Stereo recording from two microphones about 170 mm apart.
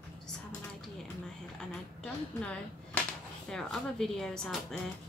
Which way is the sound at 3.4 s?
5° left (ahead or behind).